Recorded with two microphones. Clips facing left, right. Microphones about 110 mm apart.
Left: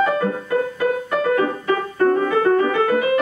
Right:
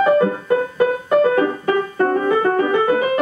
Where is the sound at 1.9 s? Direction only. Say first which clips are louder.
Left 2 dB; 20° right (ahead or behind).